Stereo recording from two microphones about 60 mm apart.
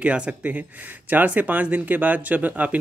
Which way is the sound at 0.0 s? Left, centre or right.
Right.